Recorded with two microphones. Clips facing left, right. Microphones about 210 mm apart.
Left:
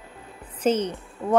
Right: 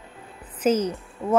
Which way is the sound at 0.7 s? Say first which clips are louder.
Right 1 dB; 30° left (ahead or behind).